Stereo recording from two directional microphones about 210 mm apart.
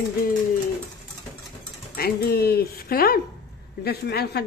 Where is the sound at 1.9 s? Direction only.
45° left (ahead or behind).